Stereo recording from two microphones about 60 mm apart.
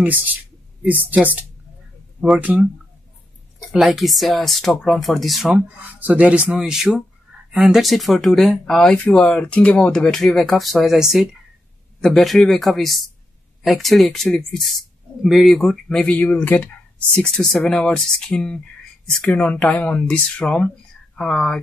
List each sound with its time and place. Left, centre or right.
0.0 s speech: right
3.8 s speech: centre
5.8 s speech: right
6.7 s speech: centre
8.9 s speech: centre
10.2 s speech: centre
16.2 s speech: left
17.3 s speech: centre